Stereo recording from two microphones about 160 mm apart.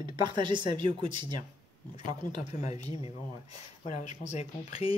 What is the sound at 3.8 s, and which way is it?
Speech, 45° left (ahead or behind).